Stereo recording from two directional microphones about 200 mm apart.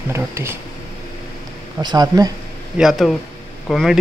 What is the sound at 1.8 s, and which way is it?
Speech, 20° right (ahead or behind).